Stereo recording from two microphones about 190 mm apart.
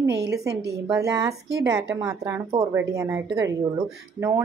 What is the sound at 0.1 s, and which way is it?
Speech, 60° right (ahead or behind).